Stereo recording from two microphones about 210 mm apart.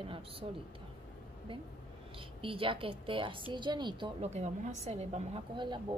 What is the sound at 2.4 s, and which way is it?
A woman's voice, 25° right (ahead or behind).